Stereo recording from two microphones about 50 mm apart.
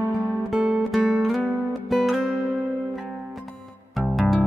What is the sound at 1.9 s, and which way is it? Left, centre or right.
Music, centre.